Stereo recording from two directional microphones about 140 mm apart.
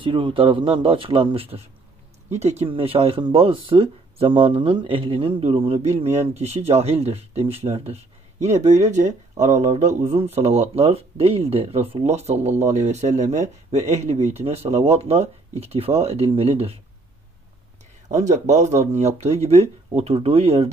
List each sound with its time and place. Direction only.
0.0 s speech: 35° right (ahead or behind)
18.0 s speech: 60° right (ahead or behind)